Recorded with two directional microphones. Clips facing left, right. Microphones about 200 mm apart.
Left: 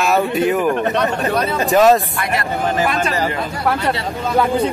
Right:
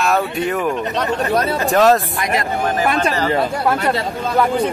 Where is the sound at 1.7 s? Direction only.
Centre (ahead or behind).